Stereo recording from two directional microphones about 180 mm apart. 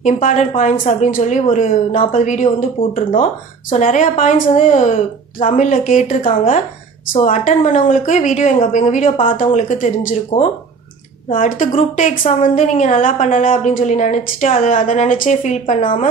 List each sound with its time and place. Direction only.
0.0 s a woman's voice: 45° left (ahead or behind)
3.7 s a woman's voice: 45° left (ahead or behind)
11.3 s a woman's voice: 50° left (ahead or behind)